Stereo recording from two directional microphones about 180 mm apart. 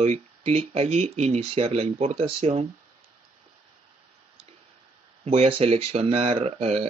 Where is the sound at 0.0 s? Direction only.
35° right (ahead or behind).